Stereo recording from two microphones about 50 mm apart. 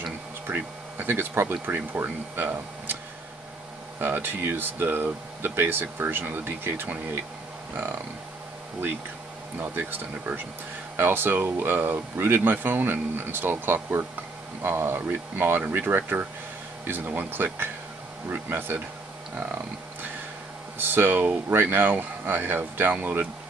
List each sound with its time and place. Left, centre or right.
0.0 s a sound: right
2.0 s speech: right
4.0 s speech: right
9.6 s speech: right
19.3 s a sound: right
20.7 s speech: right